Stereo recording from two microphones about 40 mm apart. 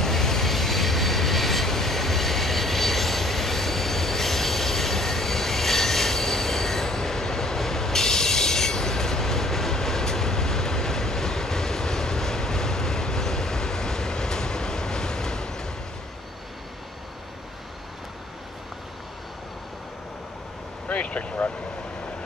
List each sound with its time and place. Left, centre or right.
0.0 s train: centre
20.9 s vehicle: left